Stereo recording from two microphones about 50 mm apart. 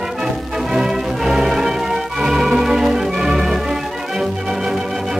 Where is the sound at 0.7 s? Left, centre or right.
Centre.